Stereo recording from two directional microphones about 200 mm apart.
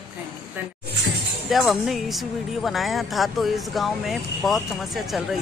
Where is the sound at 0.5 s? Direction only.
Centre (ahead or behind).